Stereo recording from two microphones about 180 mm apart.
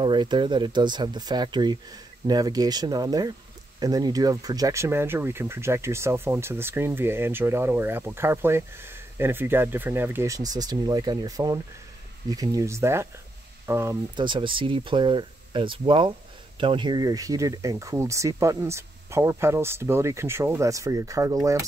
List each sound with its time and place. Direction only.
0.0 s speech: 25° right (ahead or behind)
14.1 s speech: 25° right (ahead or behind)